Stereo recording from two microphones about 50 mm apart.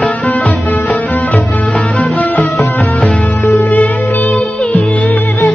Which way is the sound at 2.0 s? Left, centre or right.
Left.